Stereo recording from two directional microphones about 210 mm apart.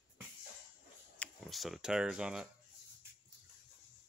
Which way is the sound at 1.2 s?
Centre (ahead or behind).